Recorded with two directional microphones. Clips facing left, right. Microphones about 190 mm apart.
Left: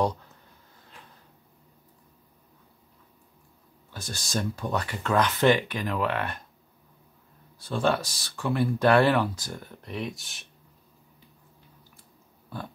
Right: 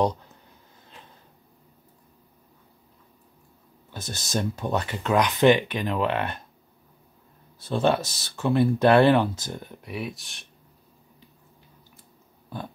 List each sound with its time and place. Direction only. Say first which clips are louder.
3.9 s speech: right 2 dB; 20° right (ahead or behind)
7.5 s speech: right 3 dB; 25° right (ahead or behind); by 10.4 s centre (ahead or behind)